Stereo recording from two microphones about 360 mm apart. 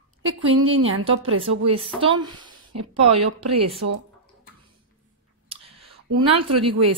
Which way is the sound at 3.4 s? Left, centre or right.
Right.